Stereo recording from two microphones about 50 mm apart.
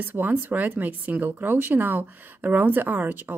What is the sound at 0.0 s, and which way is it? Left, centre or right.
Speech, right.